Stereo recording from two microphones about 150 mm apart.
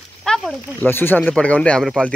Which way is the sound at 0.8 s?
15° left (ahead or behind).